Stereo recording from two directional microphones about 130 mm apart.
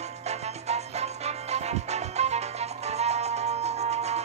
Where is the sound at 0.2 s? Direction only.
55° right (ahead or behind).